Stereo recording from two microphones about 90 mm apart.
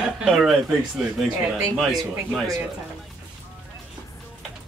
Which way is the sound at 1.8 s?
Centre (ahead or behind).